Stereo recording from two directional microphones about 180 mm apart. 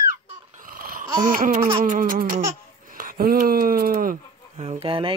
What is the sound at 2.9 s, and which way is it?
Speech, 50° right (ahead or behind).